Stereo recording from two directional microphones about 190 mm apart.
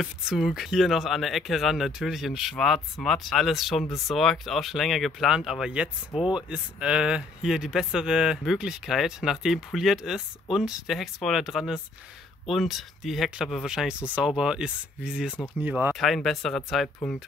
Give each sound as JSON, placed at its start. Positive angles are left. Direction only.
{"t": 0.0, "sound": "speech", "side_deg": 0}